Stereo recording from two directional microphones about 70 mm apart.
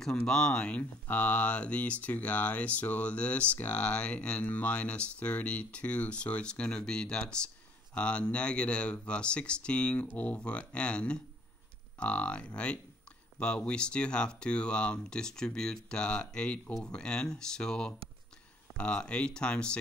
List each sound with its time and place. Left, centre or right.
0.0 s speech: centre